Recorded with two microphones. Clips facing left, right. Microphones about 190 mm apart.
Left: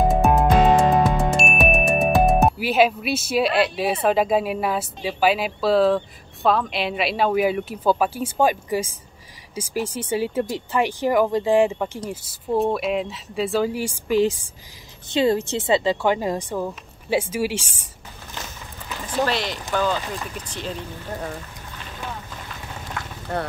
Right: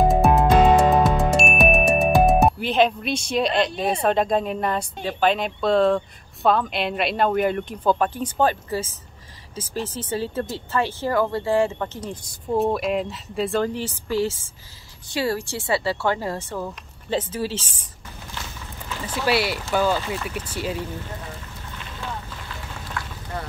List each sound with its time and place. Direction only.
0.1 s music: centre (ahead or behind)
9.6 s speech: 10° left (ahead or behind)
19.0 s speech: 10° right (ahead or behind)